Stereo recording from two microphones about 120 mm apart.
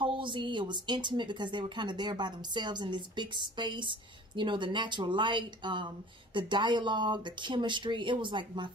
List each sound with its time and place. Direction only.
0.0 s a woman's voice: 45° right (ahead or behind)